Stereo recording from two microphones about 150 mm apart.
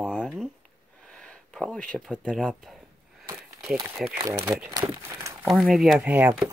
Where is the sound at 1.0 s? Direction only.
5° left (ahead or behind).